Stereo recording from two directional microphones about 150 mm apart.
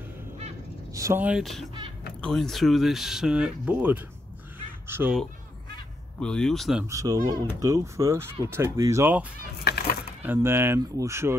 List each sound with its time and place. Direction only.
0.9 s speech: 20° right (ahead or behind)
1.2 s speech: centre (ahead or behind)
6.1 s speech: 5° left (ahead or behind)
6.9 s speech: 25° right (ahead or behind)
9.7 s speech: 90° left
10.2 s speech: 15° right (ahead or behind)